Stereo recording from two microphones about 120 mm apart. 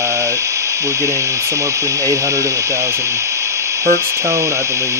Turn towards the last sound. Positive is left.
turn(degrees=-25)  # may be behind; listen again after turning